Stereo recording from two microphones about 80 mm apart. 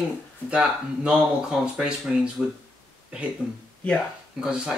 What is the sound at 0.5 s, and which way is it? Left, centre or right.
Speech, centre.